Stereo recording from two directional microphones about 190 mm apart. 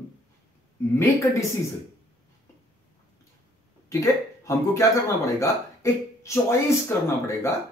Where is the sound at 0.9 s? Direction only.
15° left (ahead or behind).